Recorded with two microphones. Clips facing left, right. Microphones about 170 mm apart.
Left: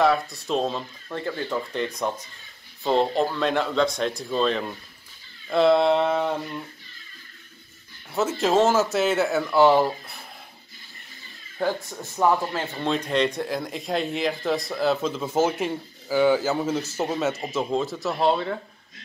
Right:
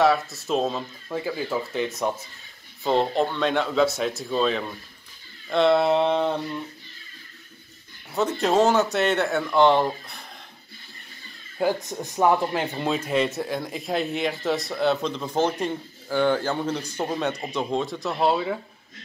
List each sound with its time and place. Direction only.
0.0 s speech: centre (ahead or behind)
8.1 s speech: centre (ahead or behind)
11.5 s speech: 15° right (ahead or behind)
12.8 s speech: 5° right (ahead or behind)